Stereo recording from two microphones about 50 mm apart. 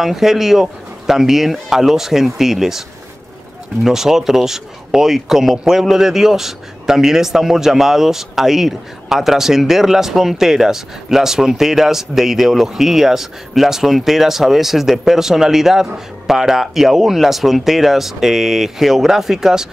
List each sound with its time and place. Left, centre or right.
0.0 s speech: centre
3.8 s a man's voice: centre